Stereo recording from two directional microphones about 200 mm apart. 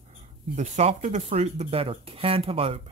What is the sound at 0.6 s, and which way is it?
Speech, 35° right (ahead or behind).